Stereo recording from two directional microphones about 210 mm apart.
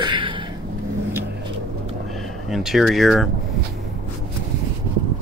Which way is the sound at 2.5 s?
Centre (ahead or behind).